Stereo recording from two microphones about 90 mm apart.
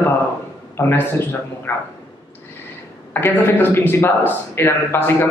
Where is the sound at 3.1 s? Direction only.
25° left (ahead or behind).